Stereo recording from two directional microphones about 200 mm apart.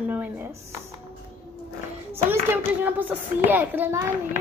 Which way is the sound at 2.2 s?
10° right (ahead or behind).